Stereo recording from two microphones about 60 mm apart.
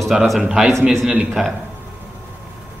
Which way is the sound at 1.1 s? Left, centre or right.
Right.